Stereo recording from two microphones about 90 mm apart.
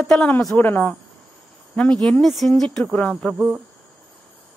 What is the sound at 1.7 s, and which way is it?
Speech, 10° left (ahead or behind).